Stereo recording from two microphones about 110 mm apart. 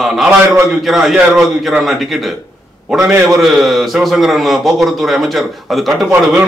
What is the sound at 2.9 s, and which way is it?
Speech, 25° right (ahead or behind).